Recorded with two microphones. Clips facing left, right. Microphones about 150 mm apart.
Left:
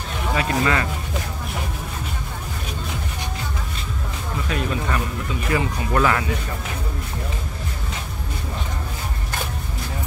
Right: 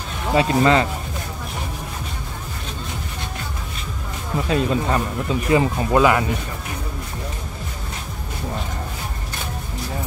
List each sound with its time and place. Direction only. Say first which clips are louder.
0.3 s speech: right 6 dB; 25° right (ahead or behind)
4.5 s speech: right 5 dB; 30° right (ahead or behind)
5.9 s speech: right 4 dB; 15° right (ahead or behind)